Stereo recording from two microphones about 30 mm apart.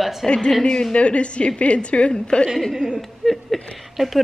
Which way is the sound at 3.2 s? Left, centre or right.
Centre.